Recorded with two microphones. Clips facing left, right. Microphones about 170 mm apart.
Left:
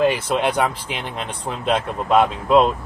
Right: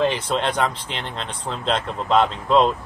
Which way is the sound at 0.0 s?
10° left (ahead or behind).